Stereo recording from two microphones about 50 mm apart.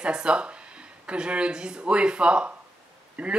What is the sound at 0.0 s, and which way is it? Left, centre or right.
Speech, centre.